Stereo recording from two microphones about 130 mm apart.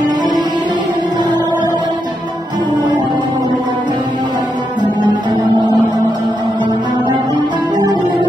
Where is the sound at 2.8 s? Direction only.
35° right (ahead or behind).